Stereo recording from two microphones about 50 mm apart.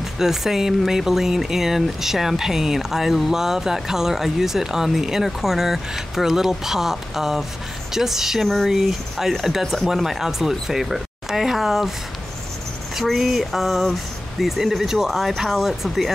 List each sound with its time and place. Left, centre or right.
0.0 s speech: centre
12.9 s speech: centre